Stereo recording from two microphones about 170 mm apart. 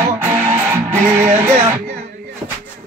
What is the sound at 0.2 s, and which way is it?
Music, 10° right (ahead or behind).